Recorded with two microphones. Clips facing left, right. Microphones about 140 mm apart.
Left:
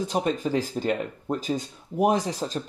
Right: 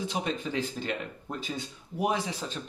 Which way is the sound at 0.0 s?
45° left (ahead or behind).